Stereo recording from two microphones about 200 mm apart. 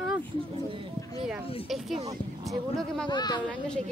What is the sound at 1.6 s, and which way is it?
Speech, centre (ahead or behind).